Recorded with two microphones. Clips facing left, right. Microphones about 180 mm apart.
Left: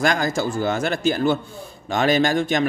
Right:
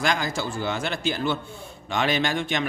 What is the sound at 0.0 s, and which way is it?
A man's voice, 45° left (ahead or behind).